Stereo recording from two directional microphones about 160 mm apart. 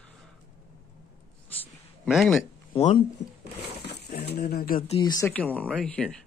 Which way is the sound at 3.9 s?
90° left.